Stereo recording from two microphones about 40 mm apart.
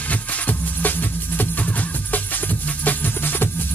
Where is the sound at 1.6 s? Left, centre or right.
Left.